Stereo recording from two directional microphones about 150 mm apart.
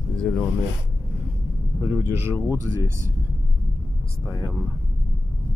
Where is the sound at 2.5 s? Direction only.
20° left (ahead or behind).